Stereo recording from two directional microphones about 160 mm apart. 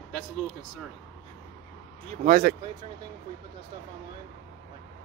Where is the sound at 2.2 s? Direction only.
60° right (ahead or behind).